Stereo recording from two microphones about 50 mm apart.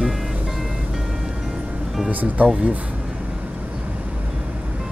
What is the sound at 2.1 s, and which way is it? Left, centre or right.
Speech, right.